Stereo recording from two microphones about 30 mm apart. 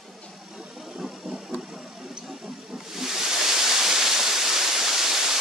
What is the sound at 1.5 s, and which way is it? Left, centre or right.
Vehicle, right.